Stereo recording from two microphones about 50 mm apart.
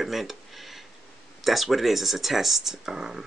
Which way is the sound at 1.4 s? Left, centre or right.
Centre.